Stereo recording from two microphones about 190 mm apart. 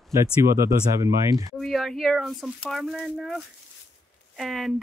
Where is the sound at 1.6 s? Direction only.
Centre (ahead or behind).